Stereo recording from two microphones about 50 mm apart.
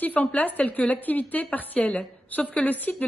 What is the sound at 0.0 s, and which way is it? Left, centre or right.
A woman's voice, left.